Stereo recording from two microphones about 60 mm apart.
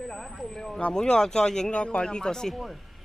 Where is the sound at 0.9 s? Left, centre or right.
Centre.